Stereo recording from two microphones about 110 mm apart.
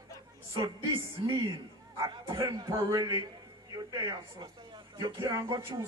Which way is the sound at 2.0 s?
30° right (ahead or behind).